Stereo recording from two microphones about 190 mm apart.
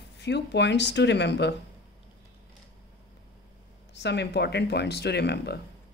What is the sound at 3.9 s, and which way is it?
Speech, 65° left (ahead or behind).